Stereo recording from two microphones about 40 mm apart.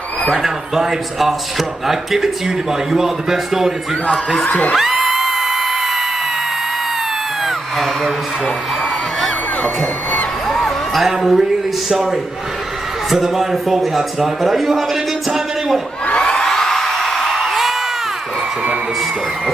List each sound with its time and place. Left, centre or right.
0.4 s a man's voice: centre
4.5 s speech: left
4.7 s music: centre
9.6 s speech: left
10.5 s music: centre
11.1 s a man's voice: centre
16.2 s whoop: centre